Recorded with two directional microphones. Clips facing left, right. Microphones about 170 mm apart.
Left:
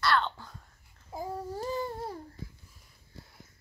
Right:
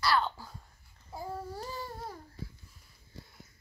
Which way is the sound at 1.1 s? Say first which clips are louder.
Left 3 dB; 15° left (ahead or behind).